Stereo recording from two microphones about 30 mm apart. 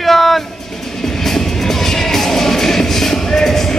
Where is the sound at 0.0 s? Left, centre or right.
Centre.